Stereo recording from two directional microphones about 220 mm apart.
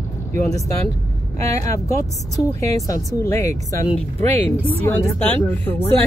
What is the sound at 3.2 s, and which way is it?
Speech, 15° left (ahead or behind).